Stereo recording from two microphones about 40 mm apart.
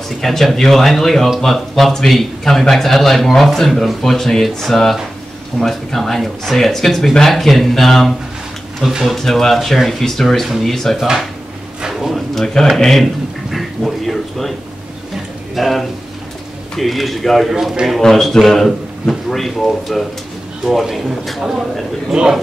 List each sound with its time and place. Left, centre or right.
0.2 s a man's voice: centre
8.8 s speech: centre
9.2 s speech: centre
11.0 s speech: centre
12.7 s a sound: centre
15.5 s a man's voice: centre
17.5 s speech: centre
17.8 s a man's voice: centre